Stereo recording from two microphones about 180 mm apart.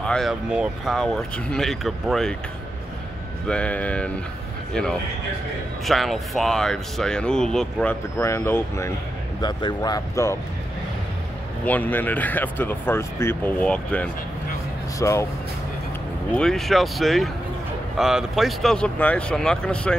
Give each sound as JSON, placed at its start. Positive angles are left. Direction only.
{"t": 0.0, "sound": "speech", "side_deg": 0}
{"t": 3.4, "sound": "speech", "side_deg": 5}
{"t": 5.9, "sound": "speech", "side_deg": 0}
{"t": 11.6, "sound": "speech", "side_deg": 10}
{"t": 16.3, "sound": "speech", "side_deg": 0}